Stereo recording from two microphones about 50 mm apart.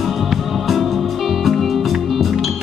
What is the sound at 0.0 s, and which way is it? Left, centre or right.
Music, centre.